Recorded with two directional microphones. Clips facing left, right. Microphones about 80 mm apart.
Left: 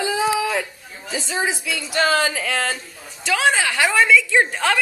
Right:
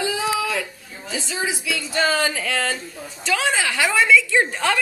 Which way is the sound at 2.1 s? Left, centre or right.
Centre.